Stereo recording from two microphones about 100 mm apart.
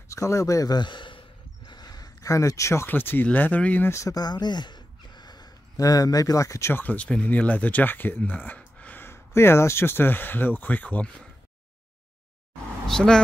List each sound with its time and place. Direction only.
0.1 s speech: 30° left (ahead or behind); by 1.2 s 55° left (ahead or behind)
1.7 s speech: 45° left (ahead or behind); by 3.9 s 15° left (ahead or behind)
3.9 s speech: 35° left (ahead or behind); by 11.2 s 15° left (ahead or behind)
12.8 s speech: 5° left (ahead or behind)